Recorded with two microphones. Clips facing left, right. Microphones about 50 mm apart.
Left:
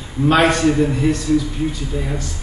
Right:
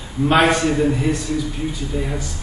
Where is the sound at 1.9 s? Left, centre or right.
Centre.